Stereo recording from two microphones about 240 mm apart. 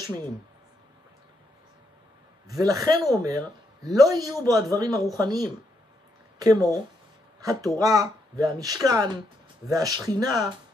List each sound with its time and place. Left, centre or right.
2.4 s speech: centre
7.8 s speech: centre